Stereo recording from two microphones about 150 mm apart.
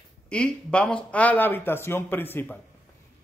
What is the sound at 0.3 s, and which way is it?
Speech, 5° left (ahead or behind).